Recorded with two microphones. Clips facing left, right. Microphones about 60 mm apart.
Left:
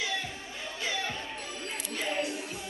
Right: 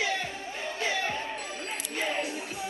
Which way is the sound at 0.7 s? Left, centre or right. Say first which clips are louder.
Right 3 dB; right.